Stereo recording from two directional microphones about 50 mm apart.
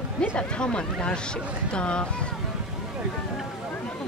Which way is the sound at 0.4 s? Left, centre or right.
Centre.